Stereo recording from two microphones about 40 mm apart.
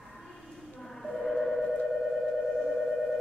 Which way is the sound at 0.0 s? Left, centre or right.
Centre.